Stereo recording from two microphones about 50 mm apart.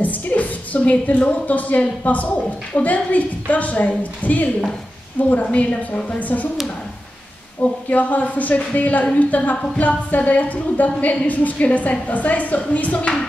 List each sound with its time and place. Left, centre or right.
0.0 s a woman's voice: left
7.9 s speech: left